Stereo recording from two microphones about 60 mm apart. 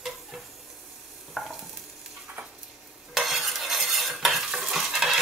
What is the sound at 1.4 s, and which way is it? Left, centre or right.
Stir, centre.